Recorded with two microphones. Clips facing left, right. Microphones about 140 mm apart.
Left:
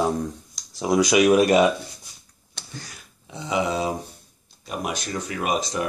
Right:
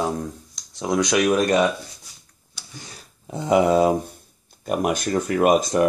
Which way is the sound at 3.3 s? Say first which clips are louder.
Right 7 dB; 50° right (ahead or behind).